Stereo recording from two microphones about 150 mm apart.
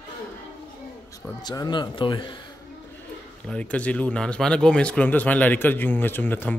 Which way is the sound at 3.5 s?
10° left (ahead or behind).